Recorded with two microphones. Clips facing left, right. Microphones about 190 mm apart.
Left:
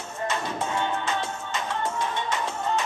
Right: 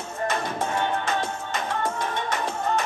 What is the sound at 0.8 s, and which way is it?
Music, 55° right (ahead or behind).